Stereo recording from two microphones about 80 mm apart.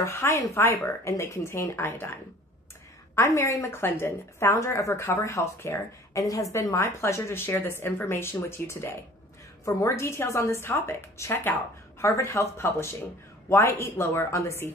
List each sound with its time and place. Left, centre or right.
0.0 s a woman's voice: left
3.2 s a woman's voice: left
9.7 s a woman's voice: left